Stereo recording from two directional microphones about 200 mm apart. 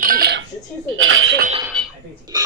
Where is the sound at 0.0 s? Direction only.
45° right (ahead or behind).